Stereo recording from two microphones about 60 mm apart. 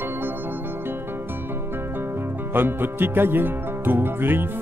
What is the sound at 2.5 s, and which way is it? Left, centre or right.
Speech, right.